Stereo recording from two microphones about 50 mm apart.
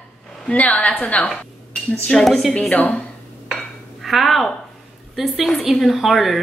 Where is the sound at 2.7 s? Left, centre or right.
Left.